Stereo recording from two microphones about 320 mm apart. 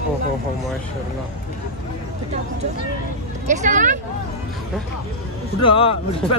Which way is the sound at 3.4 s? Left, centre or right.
Right.